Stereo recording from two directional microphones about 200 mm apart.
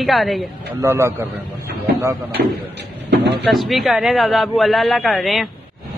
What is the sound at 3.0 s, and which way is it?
Speech, 60° right (ahead or behind).